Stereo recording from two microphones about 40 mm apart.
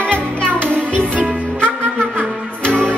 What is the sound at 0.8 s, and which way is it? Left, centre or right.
Music, right.